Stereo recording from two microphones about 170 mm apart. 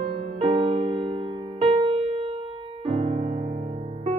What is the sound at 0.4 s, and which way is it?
Music, 30° right (ahead or behind).